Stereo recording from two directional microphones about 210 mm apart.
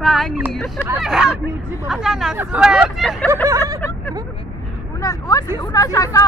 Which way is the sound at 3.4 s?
15° right (ahead or behind).